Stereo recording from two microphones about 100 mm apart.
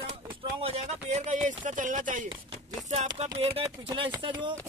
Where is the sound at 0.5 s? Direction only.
80° right.